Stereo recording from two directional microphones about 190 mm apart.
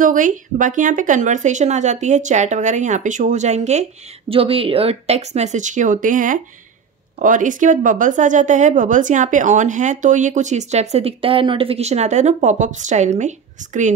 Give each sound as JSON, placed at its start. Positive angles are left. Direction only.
{"t": 0.0, "sound": "a woman's voice", "side_deg": -45}